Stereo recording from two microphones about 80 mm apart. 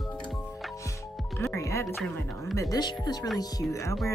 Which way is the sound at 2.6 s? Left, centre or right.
Left.